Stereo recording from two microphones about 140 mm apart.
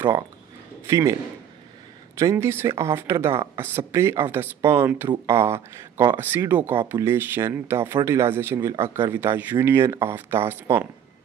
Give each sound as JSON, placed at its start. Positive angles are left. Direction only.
{"t": 0.8, "sound": "speech", "side_deg": -20}
{"t": 2.1, "sound": "speech", "side_deg": -20}